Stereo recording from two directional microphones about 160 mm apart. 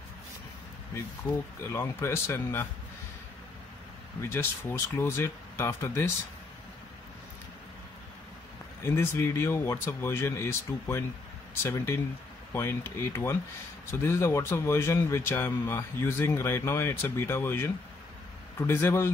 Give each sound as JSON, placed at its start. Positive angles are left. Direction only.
{"t": 1.7, "sound": "speech", "side_deg": 15}
{"t": 4.2, "sound": "speech", "side_deg": 15}
{"t": 8.8, "sound": "speech", "side_deg": 15}